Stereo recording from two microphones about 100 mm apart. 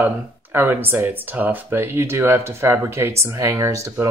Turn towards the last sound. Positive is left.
turn(degrees=-30)  # may be behind; listen again after turning